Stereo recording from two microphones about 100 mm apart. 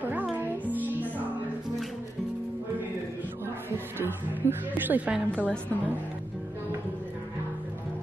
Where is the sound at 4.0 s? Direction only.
20° right (ahead or behind).